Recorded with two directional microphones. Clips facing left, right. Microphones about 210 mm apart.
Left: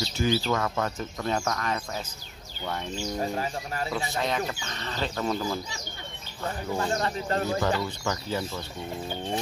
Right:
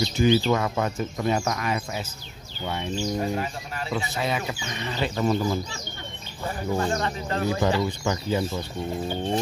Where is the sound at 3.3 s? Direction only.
35° left (ahead or behind).